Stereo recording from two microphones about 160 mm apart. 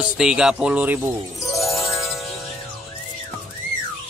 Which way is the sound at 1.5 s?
Centre (ahead or behind).